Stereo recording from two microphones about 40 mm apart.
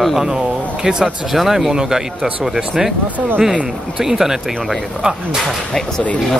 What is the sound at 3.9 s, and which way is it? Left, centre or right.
Speech, centre.